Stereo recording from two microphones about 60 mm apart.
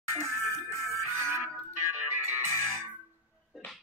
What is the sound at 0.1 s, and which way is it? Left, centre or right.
Music, left.